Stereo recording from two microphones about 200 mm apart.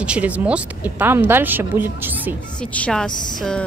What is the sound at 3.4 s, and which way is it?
Speech, 5° left (ahead or behind).